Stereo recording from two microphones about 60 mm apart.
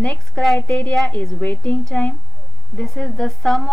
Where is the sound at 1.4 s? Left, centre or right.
Left.